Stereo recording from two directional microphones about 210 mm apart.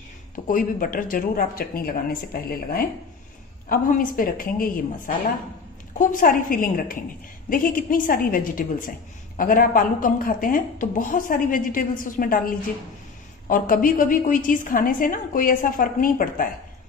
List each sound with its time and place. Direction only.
0.5 s a woman's voice: 40° left (ahead or behind)